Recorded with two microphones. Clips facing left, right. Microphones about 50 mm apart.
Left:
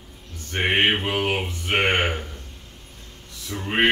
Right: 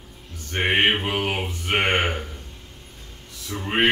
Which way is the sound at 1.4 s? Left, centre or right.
Centre.